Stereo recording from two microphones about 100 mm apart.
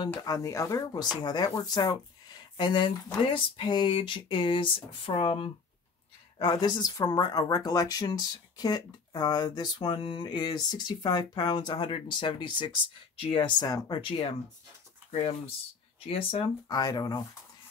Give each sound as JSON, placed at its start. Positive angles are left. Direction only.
{"t": 0.2, "sound": "speech", "side_deg": 35}
{"t": 6.3, "sound": "speech", "side_deg": 50}
{"t": 14.0, "sound": "speech", "side_deg": 60}
{"t": 15.0, "sound": "speech", "side_deg": 80}
{"t": 16.6, "sound": "speech", "side_deg": 40}